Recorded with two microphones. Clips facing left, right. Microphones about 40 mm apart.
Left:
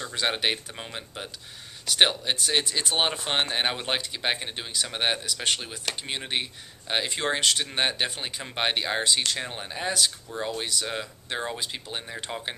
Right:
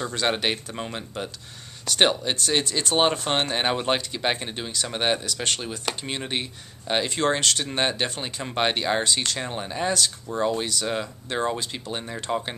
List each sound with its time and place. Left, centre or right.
0.1 s speech: centre